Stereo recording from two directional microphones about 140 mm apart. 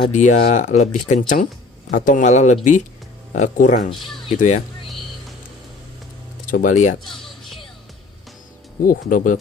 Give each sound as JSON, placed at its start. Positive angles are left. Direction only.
{"t": 0.1, "sound": "speech", "side_deg": 60}
{"t": 3.9, "sound": "speech", "side_deg": 0}
{"t": 4.4, "sound": "speech", "side_deg": 65}
{"t": 6.4, "sound": "speech", "side_deg": 70}
{"t": 7.1, "sound": "a sound", "side_deg": 0}
{"t": 8.8, "sound": "speech", "side_deg": 75}